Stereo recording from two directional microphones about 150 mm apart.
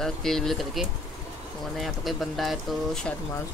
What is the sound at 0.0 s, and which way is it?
Speech, 5° left (ahead or behind).